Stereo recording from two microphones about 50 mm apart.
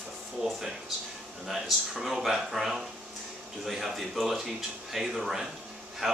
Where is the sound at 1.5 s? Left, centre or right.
Centre.